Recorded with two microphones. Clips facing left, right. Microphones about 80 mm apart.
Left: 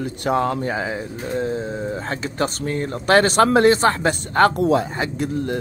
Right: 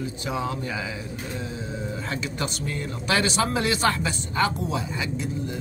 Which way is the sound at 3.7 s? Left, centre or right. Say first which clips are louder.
Left 7 dB; left.